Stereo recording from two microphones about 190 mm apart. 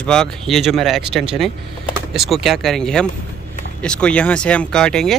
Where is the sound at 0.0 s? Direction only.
5° left (ahead or behind).